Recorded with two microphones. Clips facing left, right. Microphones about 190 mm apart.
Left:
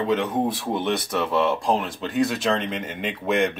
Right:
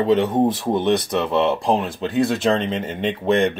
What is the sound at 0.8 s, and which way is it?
Speech, 20° right (ahead or behind).